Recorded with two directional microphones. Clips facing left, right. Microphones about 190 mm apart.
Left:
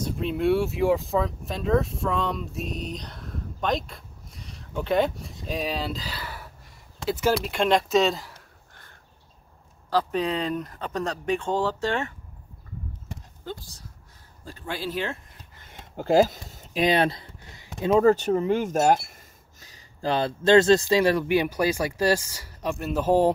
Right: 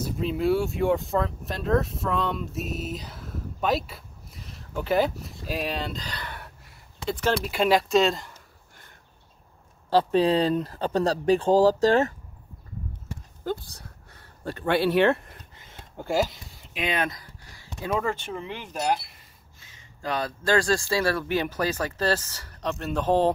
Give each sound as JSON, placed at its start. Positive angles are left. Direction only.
{"t": 0.0, "sound": "speech", "side_deg": 0}
{"t": 9.8, "sound": "speech", "side_deg": -30}
{"t": 13.4, "sound": "a sound", "side_deg": -55}
{"t": 16.3, "sound": "a sound", "side_deg": 45}
{"t": 17.9, "sound": "speech", "side_deg": 40}
{"t": 19.6, "sound": "speech", "side_deg": 35}